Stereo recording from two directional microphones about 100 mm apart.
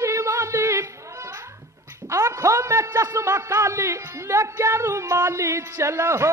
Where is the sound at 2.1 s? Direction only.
30° right (ahead or behind).